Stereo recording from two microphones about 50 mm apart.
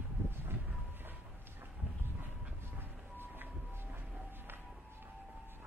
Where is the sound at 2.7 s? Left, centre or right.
Right.